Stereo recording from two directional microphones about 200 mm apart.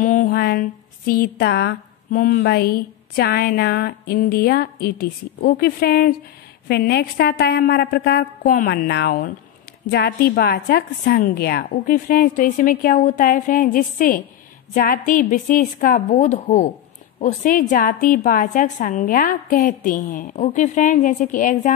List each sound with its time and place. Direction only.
0.0 s a woman's voice: 40° left (ahead or behind)